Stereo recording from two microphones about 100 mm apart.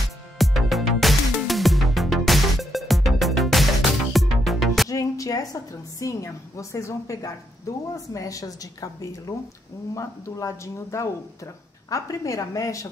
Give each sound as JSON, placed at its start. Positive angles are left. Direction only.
{"t": 0.4, "sound": "music", "side_deg": 0}
{"t": 4.8, "sound": "a woman's voice", "side_deg": 35}